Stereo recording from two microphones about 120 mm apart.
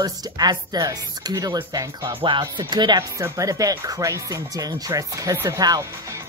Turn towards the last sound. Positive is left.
turn(degrees=-30)  # may be behind; listen again after turning